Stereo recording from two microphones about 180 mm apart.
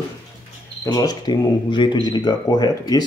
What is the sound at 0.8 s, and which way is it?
Speech, 20° left (ahead or behind).